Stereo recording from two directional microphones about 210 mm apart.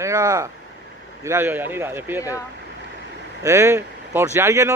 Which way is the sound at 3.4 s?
15° right (ahead or behind).